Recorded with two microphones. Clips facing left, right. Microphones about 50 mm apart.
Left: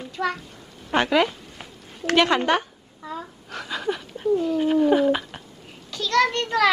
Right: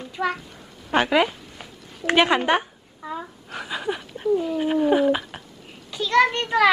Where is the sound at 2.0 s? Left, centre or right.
Centre.